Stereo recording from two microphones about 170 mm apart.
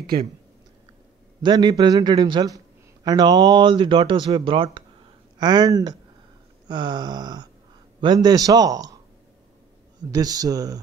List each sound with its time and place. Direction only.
1.4 s a man's voice: 25° right (ahead or behind)
10.1 s a man's voice: 20° right (ahead or behind)